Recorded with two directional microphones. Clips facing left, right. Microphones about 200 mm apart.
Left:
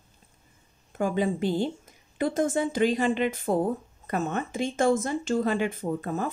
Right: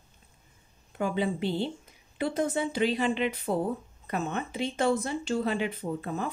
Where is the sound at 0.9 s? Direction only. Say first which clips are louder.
Left 3 dB; 45° left (ahead or behind).